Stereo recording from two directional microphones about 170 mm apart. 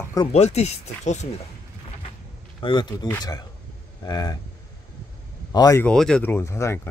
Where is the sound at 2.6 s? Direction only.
25° left (ahead or behind).